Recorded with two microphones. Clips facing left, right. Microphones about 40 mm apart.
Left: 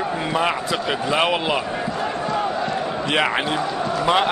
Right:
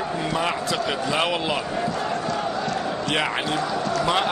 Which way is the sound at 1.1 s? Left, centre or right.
Centre.